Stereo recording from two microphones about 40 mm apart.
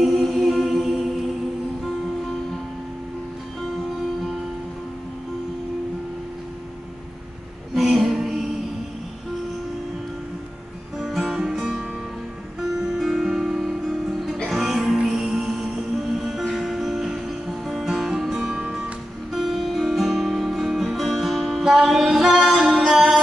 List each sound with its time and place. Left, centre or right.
0.0 s a capella: centre
7.7 s music: centre
11.0 s music: centre
18.4 s music: centre
19.3 s music: centre